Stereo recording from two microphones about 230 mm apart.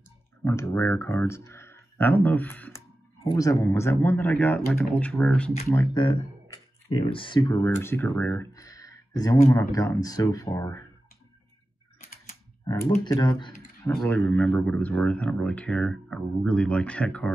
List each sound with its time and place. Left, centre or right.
0.4 s speech: centre
5.7 s speech: centre
12.7 s speech: centre